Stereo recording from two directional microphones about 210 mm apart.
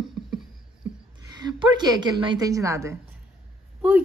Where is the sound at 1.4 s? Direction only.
20° right (ahead or behind).